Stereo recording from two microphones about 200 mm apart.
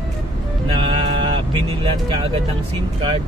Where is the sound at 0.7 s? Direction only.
25° right (ahead or behind).